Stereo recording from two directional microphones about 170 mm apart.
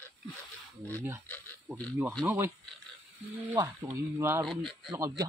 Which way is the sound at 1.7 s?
15° right (ahead or behind).